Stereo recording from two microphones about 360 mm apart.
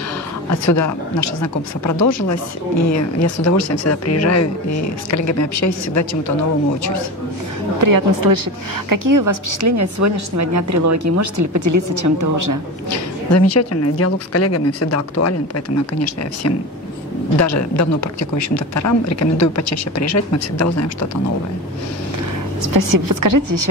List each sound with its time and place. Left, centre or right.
0.7 s speech: left
7.8 s a woman's voice: right
13.3 s speech: left
17.4 s speech: left
22.7 s a woman's voice: right